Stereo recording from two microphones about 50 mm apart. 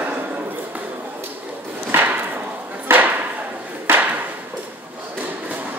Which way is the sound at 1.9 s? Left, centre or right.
Right.